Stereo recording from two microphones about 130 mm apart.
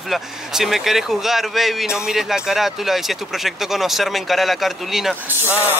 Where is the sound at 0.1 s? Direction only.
5° right (ahead or behind).